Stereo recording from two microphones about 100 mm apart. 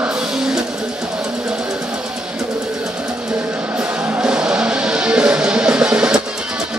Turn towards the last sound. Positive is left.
turn(degrees=-10)  # may be behind; listen again after turning